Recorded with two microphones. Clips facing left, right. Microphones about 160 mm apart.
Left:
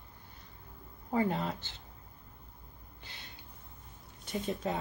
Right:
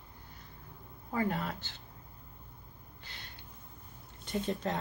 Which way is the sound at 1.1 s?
20° left (ahead or behind).